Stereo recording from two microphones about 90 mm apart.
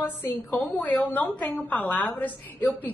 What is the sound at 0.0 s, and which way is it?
A woman's voice, 20° left (ahead or behind).